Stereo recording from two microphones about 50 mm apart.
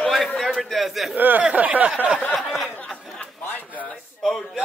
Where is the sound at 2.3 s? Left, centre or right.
Centre.